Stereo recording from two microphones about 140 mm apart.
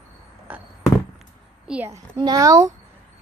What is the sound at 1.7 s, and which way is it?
Speech, 15° right (ahead or behind).